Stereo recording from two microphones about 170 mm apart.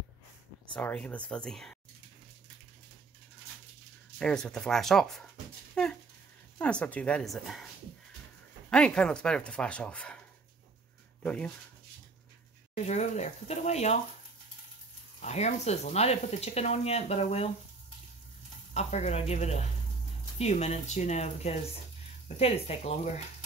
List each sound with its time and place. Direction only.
0.7 s speech: 10° left (ahead or behind)
4.2 s speech: 5° left (ahead or behind)
6.6 s speech: 5° left (ahead or behind)
11.2 s speech: 5° left (ahead or behind)
12.7 s speech: 40° left (ahead or behind)
15.2 s speech: 40° left (ahead or behind)
18.7 s speech: 40° left (ahead or behind)